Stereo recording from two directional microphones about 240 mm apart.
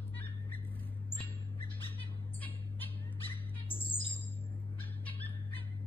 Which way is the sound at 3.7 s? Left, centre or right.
Left.